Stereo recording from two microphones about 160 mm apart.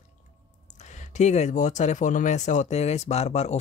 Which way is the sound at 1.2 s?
45° left (ahead or behind).